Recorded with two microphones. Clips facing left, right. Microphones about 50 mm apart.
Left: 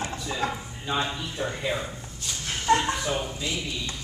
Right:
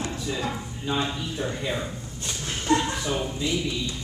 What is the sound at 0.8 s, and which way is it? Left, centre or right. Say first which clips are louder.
A man's voice: right 1 dB; centre.